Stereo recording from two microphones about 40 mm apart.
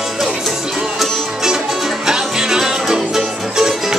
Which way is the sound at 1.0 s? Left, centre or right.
Centre.